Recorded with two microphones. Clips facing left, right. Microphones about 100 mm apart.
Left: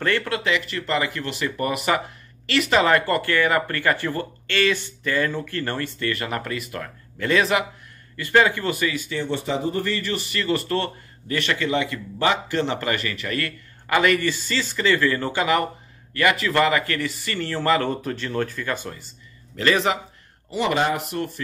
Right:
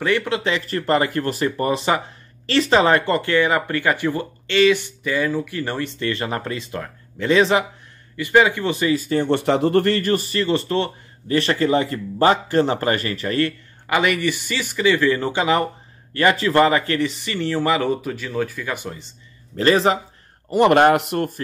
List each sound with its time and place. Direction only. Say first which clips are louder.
0.0 s speech: right 3 dB; 15° right (ahead or behind)
0.4 s speech: right 2 dB; 35° right (ahead or behind)
8.9 s speech: right 7 dB; 45° right (ahead or behind)
10.2 s speech: right 4 dB; 30° right (ahead or behind)
11.3 s speech: right 5 dB; 35° right (ahead or behind)
13.8 s speech: even; 15° right (ahead or behind)
19.5 s speech: right 4 dB; 35° right (ahead or behind)
20.4 s speech: right 8 dB; 55° right (ahead or behind)